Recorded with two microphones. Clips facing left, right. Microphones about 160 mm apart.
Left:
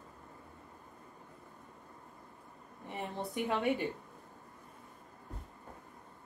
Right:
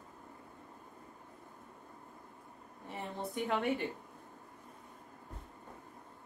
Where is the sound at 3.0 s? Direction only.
15° left (ahead or behind).